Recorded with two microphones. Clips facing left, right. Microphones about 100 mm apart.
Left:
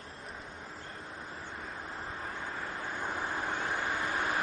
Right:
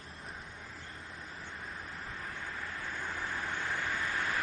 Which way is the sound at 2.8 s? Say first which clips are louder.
Left 4 dB; 20° left (ahead or behind).